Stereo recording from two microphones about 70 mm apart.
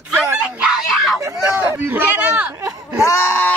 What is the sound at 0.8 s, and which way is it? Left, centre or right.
Screaming, centre.